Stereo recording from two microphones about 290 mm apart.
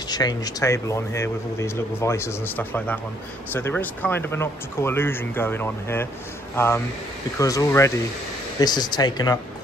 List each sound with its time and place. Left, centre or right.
0.1 s speech: centre